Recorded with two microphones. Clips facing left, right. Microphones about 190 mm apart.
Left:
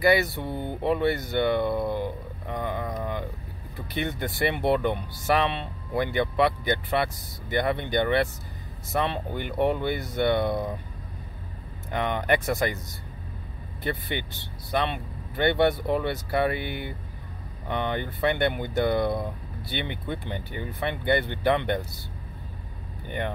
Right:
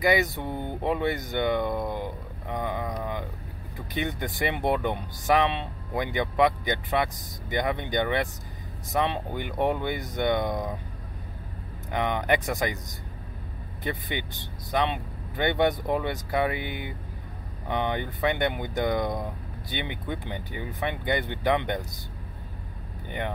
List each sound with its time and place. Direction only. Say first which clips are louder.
0.0 s speech: left 2 dB; 15° right (ahead or behind)
2.5 s a sound: even; 15° right (ahead or behind)
3.9 s speech: left 1 dB; 15° right (ahead or behind)
11.9 s speech: even; 15° right (ahead or behind)
23.0 s speech: left 1 dB; 15° right (ahead or behind)